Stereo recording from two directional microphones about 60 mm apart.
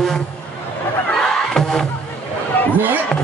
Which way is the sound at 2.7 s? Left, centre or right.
Right.